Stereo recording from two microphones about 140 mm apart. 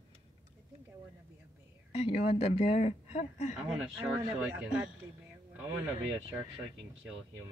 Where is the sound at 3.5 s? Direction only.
5° right (ahead or behind).